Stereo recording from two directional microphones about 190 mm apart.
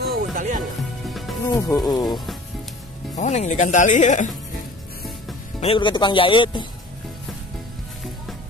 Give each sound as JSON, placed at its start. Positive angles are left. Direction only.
{"t": 0.0, "sound": "music", "side_deg": -50}
{"t": 1.1, "sound": "music", "side_deg": 0}
{"t": 1.4, "sound": "speech", "side_deg": 15}
{"t": 3.2, "sound": "speech", "side_deg": 40}
{"t": 5.6, "sound": "speech", "side_deg": 25}